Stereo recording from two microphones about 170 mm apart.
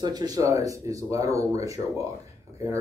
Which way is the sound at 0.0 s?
25° right (ahead or behind).